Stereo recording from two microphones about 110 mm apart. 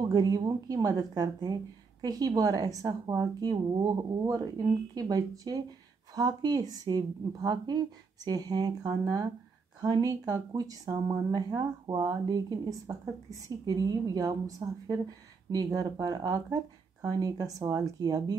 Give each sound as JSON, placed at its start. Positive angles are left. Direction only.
{"t": 0.0, "sound": "a woman's voice", "side_deg": -40}